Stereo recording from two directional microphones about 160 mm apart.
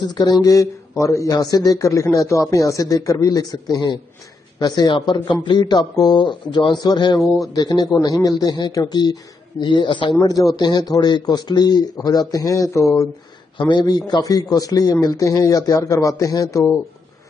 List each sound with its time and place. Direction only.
0.0 s speech: 25° left (ahead or behind)